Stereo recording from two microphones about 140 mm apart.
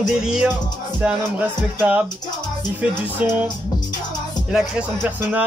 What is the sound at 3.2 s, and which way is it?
Speech, 10° right (ahead or behind).